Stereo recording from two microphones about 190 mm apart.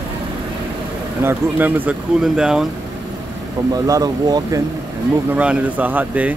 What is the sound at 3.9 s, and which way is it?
Speech, 20° right (ahead or behind).